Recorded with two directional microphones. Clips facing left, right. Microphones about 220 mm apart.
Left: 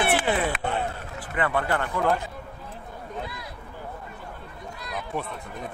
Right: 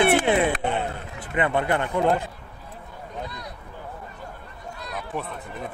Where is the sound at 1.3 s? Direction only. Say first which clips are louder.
Right 3 dB; 20° right (ahead or behind).